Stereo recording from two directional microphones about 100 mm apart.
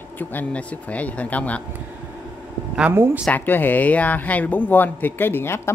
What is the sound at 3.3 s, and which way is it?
Speech, 20° left (ahead or behind).